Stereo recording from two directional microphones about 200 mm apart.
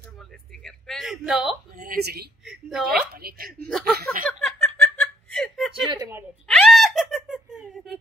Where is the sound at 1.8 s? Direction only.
50° right (ahead or behind).